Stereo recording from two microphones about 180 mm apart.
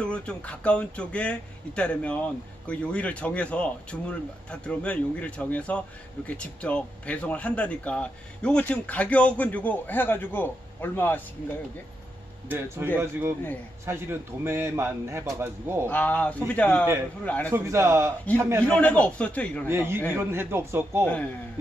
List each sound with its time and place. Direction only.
0.0 s speech: 5° left (ahead or behind)
12.4 s a man's voice: 10° right (ahead or behind)
15.9 s speech: 10° left (ahead or behind)
17.5 s a man's voice: 15° right (ahead or behind)
18.6 s speech: 5° left (ahead or behind)
19.7 s a man's voice: 15° right (ahead or behind)
21.0 s speech: 10° left (ahead or behind)